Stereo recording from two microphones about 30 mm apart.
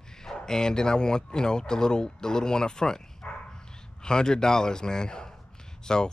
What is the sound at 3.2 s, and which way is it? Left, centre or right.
Dog, left.